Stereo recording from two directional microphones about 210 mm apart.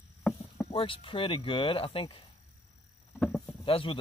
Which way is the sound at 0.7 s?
25° left (ahead or behind).